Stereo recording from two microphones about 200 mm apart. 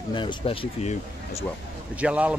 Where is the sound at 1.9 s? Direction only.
5° right (ahead or behind).